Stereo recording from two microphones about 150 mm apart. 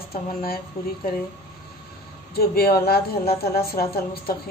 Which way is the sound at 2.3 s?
90° left.